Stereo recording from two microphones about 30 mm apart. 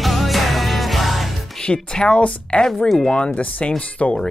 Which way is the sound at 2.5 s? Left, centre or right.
Left.